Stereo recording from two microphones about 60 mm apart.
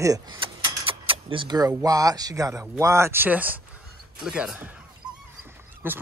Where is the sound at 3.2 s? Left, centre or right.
Right.